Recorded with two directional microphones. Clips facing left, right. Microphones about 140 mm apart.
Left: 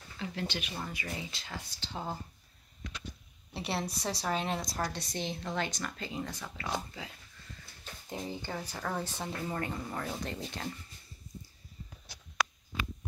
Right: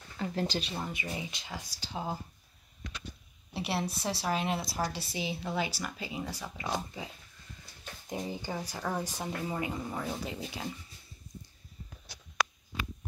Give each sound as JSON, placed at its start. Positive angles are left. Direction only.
{"t": 0.2, "sound": "speech", "side_deg": -40}
{"t": 0.7, "sound": "a woman's voice", "side_deg": -15}
{"t": 3.5, "sound": "a woman's voice", "side_deg": 0}
{"t": 8.1, "sound": "a woman's voice", "side_deg": -15}